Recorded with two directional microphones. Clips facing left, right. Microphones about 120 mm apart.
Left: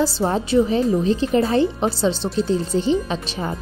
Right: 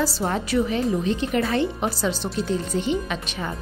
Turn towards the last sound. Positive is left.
turn(degrees=30)  # may be behind; listen again after turning